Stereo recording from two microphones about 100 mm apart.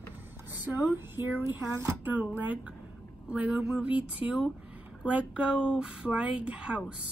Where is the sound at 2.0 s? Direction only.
15° right (ahead or behind).